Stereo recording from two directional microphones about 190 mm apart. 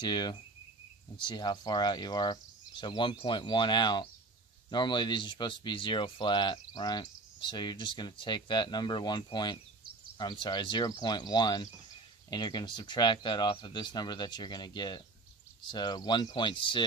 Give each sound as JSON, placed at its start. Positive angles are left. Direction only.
{"t": 0.0, "sound": "speech", "side_deg": 25}